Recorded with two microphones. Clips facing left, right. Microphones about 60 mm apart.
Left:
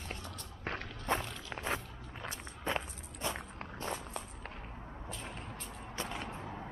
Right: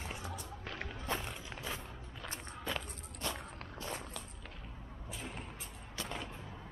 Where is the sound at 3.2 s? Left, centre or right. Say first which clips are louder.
Left 2 dB; centre.